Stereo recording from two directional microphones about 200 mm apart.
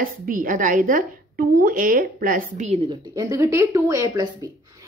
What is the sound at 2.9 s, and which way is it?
Speech, 15° right (ahead or behind).